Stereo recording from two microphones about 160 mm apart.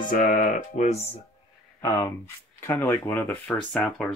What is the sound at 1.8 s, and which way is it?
Speech, 20° left (ahead or behind).